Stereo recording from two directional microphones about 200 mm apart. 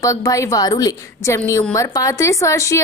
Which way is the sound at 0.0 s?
15° left (ahead or behind).